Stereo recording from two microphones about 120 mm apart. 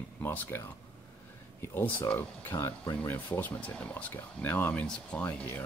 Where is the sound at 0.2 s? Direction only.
15° left (ahead or behind).